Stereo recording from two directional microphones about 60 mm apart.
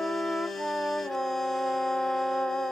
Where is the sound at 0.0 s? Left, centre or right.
Centre.